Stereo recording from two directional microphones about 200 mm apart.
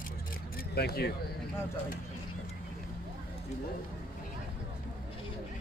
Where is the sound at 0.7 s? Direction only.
50° left (ahead or behind).